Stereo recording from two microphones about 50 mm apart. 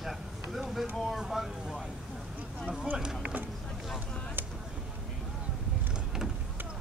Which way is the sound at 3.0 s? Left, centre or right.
Centre.